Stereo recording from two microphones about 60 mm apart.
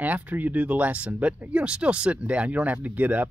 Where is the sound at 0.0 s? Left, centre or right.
Right.